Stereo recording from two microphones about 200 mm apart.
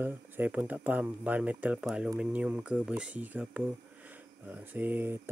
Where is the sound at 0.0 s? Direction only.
10° right (ahead or behind).